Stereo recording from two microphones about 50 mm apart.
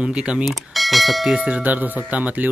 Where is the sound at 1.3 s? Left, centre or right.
Right.